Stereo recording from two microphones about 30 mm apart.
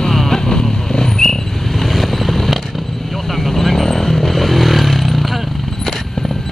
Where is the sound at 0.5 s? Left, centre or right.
Left.